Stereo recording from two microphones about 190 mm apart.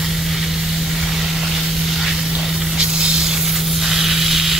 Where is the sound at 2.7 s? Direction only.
5° right (ahead or behind).